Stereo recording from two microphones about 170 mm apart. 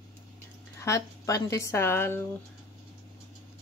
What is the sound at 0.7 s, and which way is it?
Speech, 20° left (ahead or behind).